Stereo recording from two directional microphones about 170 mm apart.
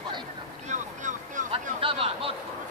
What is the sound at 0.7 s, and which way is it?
Speech, 45° right (ahead or behind).